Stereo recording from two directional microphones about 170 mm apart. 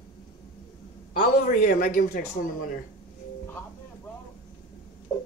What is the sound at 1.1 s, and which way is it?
A man's voice, 55° left (ahead or behind).